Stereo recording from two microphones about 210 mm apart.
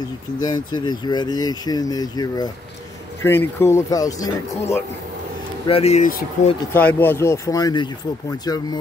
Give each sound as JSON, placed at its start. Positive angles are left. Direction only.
{"t": 0.4, "sound": "speech", "side_deg": 20}
{"t": 5.7, "sound": "speech", "side_deg": 30}
{"t": 6.7, "sound": "speech", "side_deg": 10}